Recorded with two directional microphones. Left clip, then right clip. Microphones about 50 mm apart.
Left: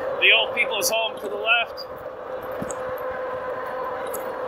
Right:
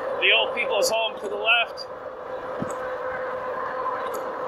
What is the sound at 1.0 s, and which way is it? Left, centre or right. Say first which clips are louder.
Speech: even; right.